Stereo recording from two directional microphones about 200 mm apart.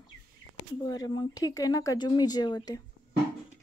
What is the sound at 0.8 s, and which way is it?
Speech, 20° left (ahead or behind).